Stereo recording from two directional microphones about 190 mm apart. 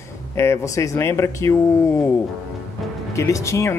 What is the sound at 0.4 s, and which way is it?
Speech, 15° left (ahead or behind).